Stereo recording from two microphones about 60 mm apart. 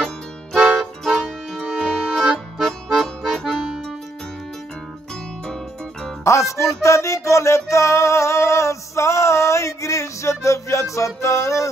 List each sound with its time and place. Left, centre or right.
0.7 s music: centre
2.6 s accordion: centre
6.2 s music: left